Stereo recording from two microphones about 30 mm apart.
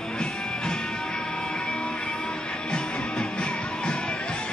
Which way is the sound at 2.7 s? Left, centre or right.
Left.